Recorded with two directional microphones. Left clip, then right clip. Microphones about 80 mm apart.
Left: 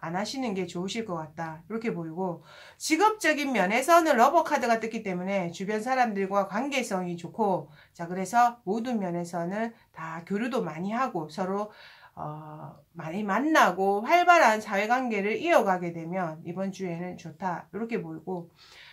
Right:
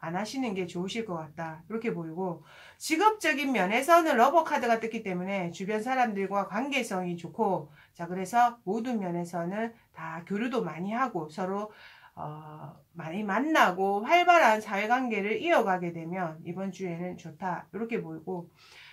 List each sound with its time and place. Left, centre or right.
0.0 s speech: left